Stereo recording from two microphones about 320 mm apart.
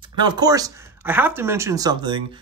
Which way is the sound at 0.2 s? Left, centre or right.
Centre.